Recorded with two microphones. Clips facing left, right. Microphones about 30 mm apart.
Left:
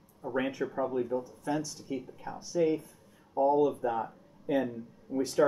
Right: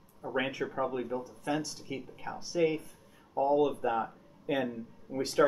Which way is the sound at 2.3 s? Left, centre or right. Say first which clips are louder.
Left 2 dB; right.